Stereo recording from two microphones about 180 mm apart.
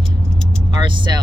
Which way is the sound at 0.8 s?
25° right (ahead or behind).